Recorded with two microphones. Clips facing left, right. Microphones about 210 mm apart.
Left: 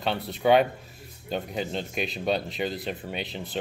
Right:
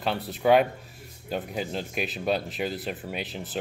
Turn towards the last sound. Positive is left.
turn(degrees=-5)  # may be behind; listen again after turning